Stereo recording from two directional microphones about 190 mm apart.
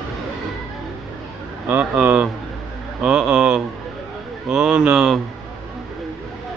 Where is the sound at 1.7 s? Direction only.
10° right (ahead or behind).